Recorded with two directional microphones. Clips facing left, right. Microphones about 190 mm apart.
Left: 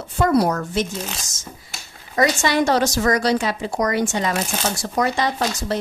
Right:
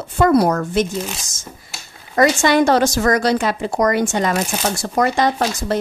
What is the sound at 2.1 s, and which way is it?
A woman's voice, 50° right (ahead or behind).